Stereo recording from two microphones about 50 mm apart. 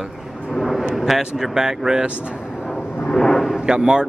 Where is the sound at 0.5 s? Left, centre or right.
Centre.